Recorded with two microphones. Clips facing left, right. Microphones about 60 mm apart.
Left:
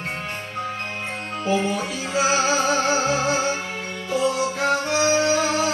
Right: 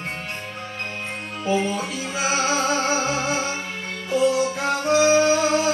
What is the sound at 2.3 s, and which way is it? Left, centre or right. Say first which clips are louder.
Music: right 1 dB; centre.